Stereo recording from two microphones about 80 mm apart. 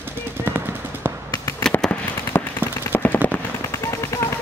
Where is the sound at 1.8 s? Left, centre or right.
Centre.